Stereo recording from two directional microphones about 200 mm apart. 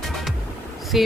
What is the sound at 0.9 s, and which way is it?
Speech, centre (ahead or behind).